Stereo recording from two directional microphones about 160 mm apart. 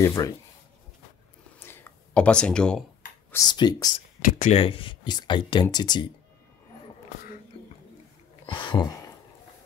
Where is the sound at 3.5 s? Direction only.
25° left (ahead or behind).